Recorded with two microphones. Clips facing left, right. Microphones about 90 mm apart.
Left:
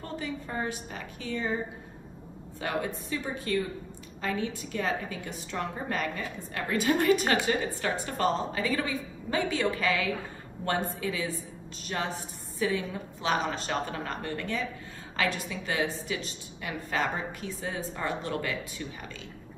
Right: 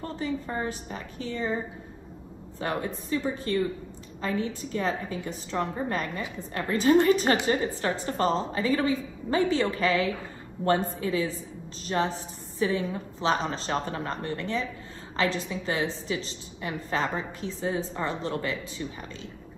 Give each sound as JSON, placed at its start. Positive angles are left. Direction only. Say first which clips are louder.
{"t": 0.0, "sound": "a woman's voice", "louder": "right 4 dB", "side_deg": -35}
{"t": 2.6, "sound": "a woman's voice", "louder": "right 1 dB", "side_deg": -35}